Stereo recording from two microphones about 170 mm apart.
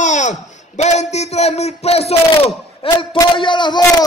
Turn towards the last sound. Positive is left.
turn(degrees=25)  # may be behind; listen again after turning